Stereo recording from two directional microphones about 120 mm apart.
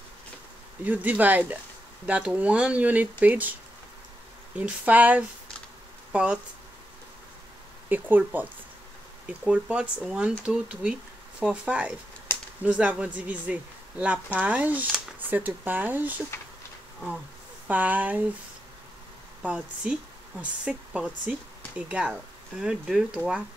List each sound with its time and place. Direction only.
0.8 s speech: 15° right (ahead or behind)
4.6 s speech: 10° right (ahead or behind)
7.9 s speech: 15° right (ahead or behind)
12.3 s a sound: 20° left (ahead or behind)
12.6 s speech: 10° right (ahead or behind)
17.6 s speech: 15° right (ahead or behind)
19.4 s speech: 10° right (ahead or behind)